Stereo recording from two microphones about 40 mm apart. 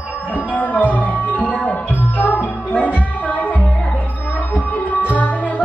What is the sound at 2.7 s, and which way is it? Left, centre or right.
Music, left.